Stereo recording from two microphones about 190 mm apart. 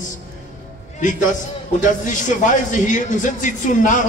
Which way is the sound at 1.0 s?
45° left (ahead or behind).